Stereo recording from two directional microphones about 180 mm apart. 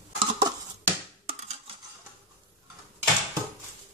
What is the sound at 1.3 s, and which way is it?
Scissors, 35° right (ahead or behind).